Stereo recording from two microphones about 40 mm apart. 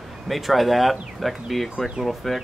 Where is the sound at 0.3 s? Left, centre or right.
Centre.